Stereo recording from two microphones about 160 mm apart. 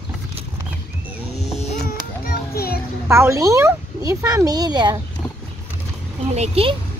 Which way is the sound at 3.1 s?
20° right (ahead or behind).